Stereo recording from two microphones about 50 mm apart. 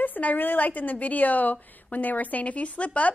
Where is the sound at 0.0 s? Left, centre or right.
Left.